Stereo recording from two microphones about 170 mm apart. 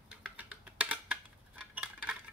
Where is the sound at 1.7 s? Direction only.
5° right (ahead or behind).